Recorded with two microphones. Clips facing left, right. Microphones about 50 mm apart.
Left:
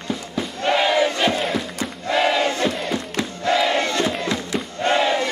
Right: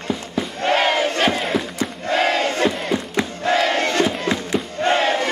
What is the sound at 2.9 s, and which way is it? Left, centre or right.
Crowd, right.